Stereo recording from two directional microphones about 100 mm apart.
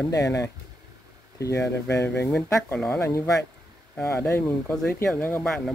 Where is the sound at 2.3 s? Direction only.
5° left (ahead or behind).